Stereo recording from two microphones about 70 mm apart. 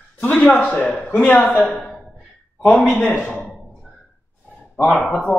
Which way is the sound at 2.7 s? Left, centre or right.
Centre.